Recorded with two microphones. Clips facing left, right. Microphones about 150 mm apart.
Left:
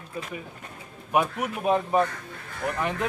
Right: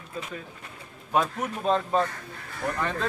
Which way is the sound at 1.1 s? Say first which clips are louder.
Left 1 dB; 10° left (ahead or behind).